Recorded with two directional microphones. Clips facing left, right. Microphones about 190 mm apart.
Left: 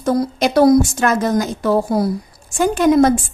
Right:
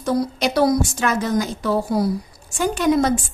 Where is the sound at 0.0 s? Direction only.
50° left (ahead or behind).